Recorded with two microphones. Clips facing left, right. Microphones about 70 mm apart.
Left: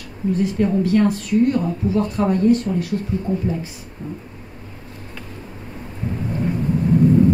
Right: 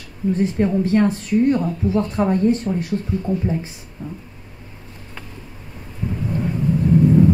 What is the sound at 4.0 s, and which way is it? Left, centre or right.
Vehicle, left.